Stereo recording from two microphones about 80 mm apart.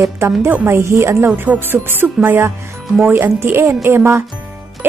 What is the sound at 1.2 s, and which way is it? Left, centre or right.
Speech, centre.